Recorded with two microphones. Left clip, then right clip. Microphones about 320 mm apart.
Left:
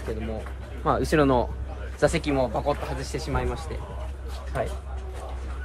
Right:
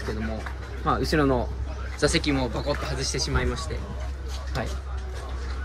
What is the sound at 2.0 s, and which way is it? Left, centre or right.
Speech, centre.